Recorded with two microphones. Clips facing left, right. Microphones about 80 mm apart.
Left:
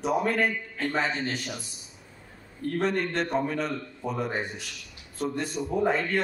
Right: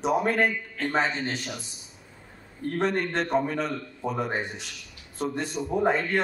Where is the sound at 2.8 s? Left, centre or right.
Centre.